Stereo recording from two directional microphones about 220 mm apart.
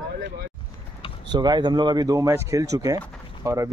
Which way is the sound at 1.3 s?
20° right (ahead or behind).